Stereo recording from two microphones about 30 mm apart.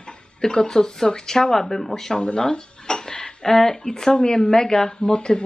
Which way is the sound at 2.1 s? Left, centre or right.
Left.